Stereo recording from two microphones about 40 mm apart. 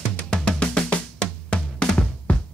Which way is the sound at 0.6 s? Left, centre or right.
Left.